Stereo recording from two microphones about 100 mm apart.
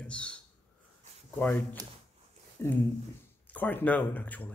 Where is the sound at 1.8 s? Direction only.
35° right (ahead or behind).